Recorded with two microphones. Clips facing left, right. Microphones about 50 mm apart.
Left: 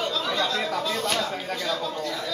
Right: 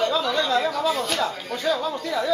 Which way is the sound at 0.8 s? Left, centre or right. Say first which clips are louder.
Right 4 dB; centre.